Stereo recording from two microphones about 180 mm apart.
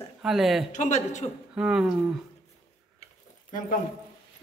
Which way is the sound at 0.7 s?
40° left (ahead or behind).